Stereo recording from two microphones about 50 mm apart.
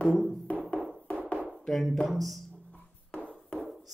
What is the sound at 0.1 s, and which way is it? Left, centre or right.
Music, centre.